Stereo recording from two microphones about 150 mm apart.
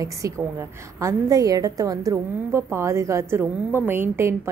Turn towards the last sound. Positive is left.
turn(degrees=-15)  # may be behind; listen again after turning